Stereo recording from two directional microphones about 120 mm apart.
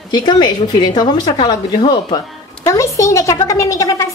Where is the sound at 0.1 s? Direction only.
35° left (ahead or behind).